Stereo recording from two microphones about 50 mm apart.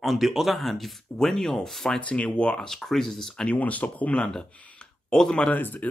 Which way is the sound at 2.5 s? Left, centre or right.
Centre.